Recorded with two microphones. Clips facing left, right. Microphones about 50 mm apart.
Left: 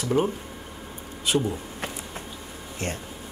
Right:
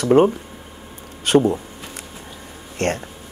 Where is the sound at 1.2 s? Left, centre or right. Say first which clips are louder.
Right 9 dB; right.